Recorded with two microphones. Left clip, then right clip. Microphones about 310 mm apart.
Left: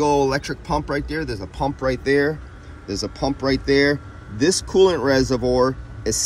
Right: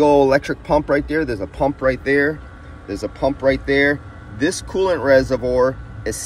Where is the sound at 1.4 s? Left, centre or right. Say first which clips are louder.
Right 5 dB; centre.